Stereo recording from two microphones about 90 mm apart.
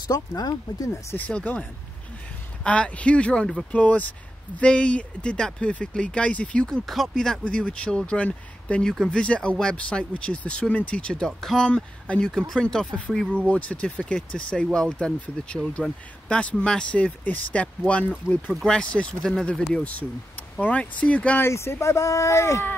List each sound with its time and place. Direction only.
0.4 s speech: 40° left (ahead or behind)
1.1 s speech: 20° left (ahead or behind)
19.7 s speech: 15° left (ahead or behind)
21.4 s speech: 30° left (ahead or behind)